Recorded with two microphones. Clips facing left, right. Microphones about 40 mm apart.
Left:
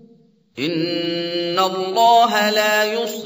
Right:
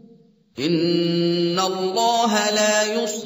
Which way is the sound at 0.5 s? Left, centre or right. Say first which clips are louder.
Right 2 dB; left.